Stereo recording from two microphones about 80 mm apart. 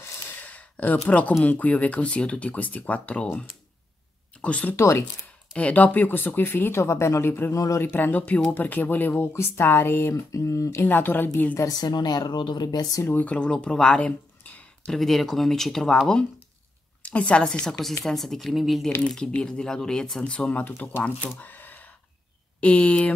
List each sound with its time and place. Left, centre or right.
0.4 s a sound: centre
1.4 s speech: centre
4.7 s speech: left
5.5 s speech: centre
7.5 s speech: left
7.8 s speech: left
10.8 s speech: left
11.5 s speech: left
13.0 s speech: left
14.9 s speech: centre
21.4 s a sound: left
22.6 s speech: centre